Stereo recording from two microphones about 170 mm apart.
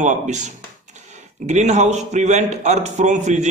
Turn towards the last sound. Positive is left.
turn(degrees=-45)  # may be behind; listen again after turning